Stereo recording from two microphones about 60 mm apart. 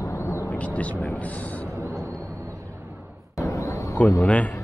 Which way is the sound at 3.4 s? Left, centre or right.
Left.